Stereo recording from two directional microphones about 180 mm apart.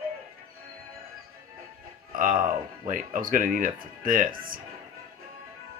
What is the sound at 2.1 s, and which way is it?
Speech, 50° right (ahead or behind).